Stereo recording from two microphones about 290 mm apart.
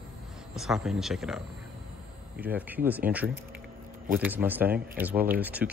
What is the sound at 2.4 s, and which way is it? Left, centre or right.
Speech, centre.